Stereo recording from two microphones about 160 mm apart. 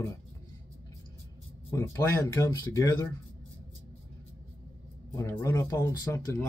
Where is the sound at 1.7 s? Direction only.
20° left (ahead or behind).